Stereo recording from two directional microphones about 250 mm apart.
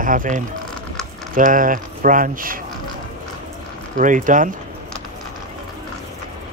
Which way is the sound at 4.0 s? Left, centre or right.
Right.